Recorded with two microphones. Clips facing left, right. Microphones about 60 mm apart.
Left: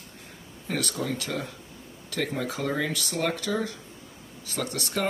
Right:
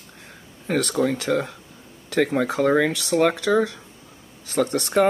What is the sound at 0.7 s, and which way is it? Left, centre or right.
Speech, right.